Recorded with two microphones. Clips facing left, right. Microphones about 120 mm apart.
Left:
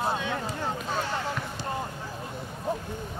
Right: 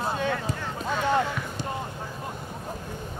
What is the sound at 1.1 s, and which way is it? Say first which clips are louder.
Basketball bounce: right 6 dB; 50° right (ahead or behind).